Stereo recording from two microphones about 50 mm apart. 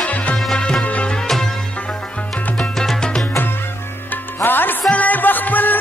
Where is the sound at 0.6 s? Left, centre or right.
Centre.